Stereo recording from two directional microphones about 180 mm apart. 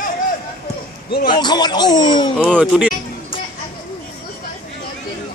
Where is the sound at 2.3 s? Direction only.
Centre (ahead or behind).